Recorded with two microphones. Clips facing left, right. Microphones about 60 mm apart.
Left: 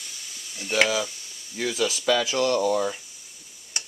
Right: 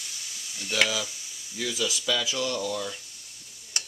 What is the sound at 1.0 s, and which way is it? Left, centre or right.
Sizzle, centre.